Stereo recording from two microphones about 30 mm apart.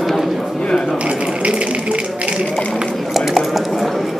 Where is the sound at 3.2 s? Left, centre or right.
Centre.